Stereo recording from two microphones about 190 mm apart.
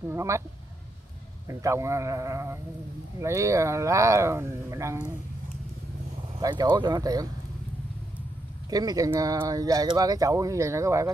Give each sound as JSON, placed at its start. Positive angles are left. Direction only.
{"t": 0.0, "sound": "speech", "side_deg": -15}
{"t": 1.5, "sound": "speech", "side_deg": -15}
{"t": 6.4, "sound": "speech", "side_deg": -20}
{"t": 8.6, "sound": "speech", "side_deg": -20}